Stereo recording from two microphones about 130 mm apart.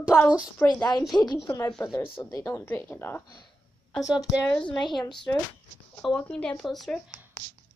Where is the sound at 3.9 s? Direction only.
5° right (ahead or behind).